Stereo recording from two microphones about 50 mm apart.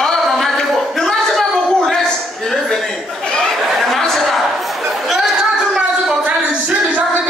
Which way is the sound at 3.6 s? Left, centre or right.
Centre.